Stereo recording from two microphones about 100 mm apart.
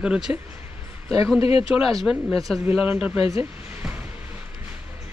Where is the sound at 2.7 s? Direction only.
10° right (ahead or behind).